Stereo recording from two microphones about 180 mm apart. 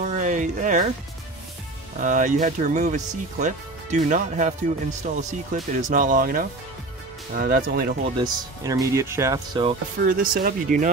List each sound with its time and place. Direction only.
0.0 s a sound: 40° right (ahead or behind)
2.0 s speech: 45° right (ahead or behind)
8.2 s speech: 20° right (ahead or behind)
10.0 s speech: 50° right (ahead or behind)